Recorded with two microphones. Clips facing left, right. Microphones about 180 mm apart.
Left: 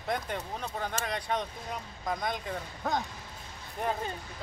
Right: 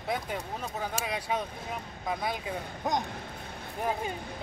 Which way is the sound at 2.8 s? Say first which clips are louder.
Right 1 dB; 20° right (ahead or behind).